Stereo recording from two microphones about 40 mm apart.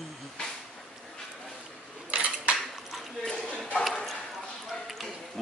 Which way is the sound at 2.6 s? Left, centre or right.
Centre.